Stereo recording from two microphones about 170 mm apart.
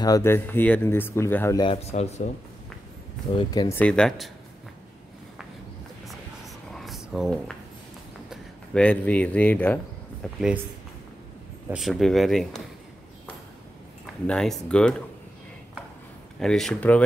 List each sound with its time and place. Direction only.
0.0 s speech: 20° left (ahead or behind)
1.6 s speech: 35° left (ahead or behind)
3.3 s speech: 25° left (ahead or behind)
3.7 s speech: 5° left (ahead or behind)
6.0 s a sound: centre (ahead or behind)
8.3 s speech: 5° left (ahead or behind)
11.7 s speech: centre (ahead or behind)
14.2 s speech: 5° left (ahead or behind)
16.3 s speech: centre (ahead or behind)